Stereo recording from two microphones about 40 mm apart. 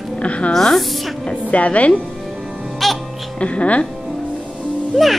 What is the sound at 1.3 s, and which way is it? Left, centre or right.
Speech, left.